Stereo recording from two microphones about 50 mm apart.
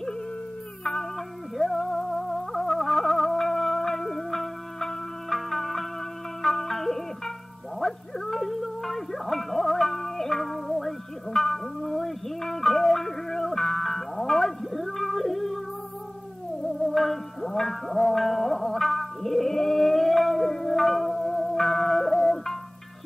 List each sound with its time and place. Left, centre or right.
0.8 s music: centre
16.8 s music: centre